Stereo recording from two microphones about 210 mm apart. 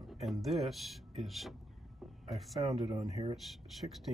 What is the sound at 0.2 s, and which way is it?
Speech, centre (ahead or behind).